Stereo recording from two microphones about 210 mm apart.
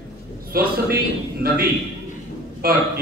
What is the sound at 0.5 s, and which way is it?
A man's voice, 45° right (ahead or behind).